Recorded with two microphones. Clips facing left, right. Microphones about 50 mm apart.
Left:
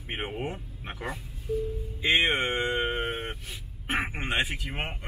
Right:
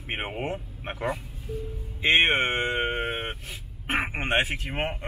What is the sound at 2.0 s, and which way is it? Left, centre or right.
Speech, right.